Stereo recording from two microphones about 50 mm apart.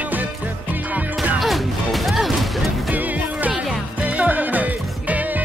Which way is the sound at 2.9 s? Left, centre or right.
Right.